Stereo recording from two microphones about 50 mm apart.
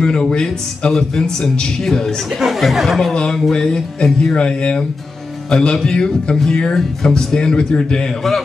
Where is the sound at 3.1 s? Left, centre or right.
Centre.